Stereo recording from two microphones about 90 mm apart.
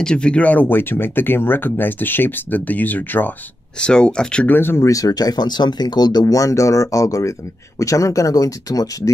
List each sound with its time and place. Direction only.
0.0 s speech: 10° left (ahead or behind)
3.8 s speech: 10° left (ahead or behind)
4.6 s speech: 25° left (ahead or behind)
4.8 s speech: 40° left (ahead or behind)